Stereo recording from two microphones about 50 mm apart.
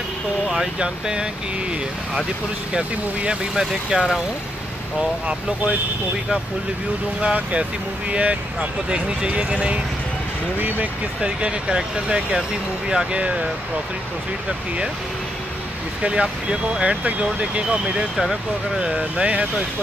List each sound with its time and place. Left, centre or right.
0.7 s speech: centre
2.7 s speech: centre
7.2 s speech: right
11.1 s speech: centre
16.0 s speech: right